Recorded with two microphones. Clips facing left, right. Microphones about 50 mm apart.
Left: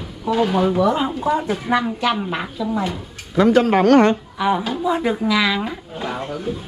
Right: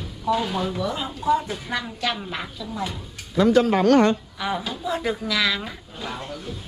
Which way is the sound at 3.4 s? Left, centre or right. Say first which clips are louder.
Left 3 dB; left.